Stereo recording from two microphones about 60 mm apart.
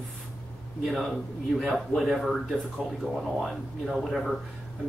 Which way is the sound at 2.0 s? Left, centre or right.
Centre.